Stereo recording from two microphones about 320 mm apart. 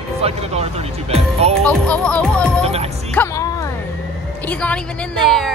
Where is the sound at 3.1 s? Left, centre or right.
Centre.